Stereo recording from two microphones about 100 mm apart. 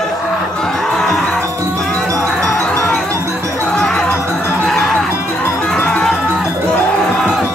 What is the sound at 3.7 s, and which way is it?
Music, 5° left (ahead or behind).